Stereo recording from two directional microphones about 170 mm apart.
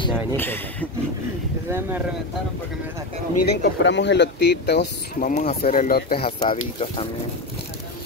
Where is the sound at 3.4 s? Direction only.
90° left.